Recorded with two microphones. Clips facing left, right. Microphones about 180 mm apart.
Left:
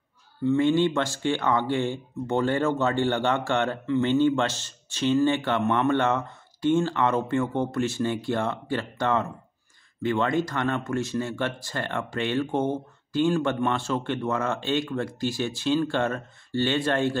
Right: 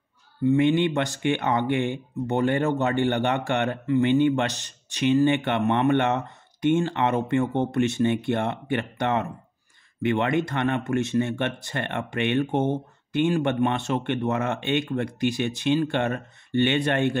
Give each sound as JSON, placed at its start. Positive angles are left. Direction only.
{"t": 0.5, "sound": "speech", "side_deg": -20}